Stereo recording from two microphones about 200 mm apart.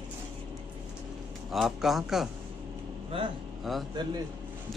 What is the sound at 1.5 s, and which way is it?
Speech, centre (ahead or behind).